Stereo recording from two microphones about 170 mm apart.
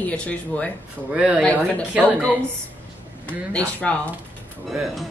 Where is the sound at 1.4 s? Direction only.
5° left (ahead or behind).